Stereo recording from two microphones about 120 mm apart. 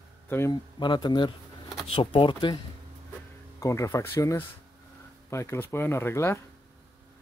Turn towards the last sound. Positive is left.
turn(degrees=20)  # may be behind; listen again after turning